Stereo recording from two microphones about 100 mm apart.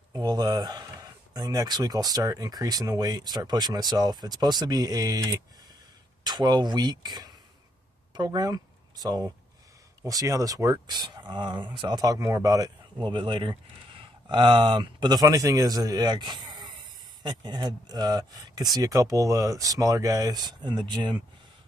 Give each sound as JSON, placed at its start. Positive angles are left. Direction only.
{"t": 0.1, "sound": "speech", "side_deg": -45}
{"t": 10.9, "sound": "speech", "side_deg": -45}
{"t": 13.0, "sound": "speech", "side_deg": -55}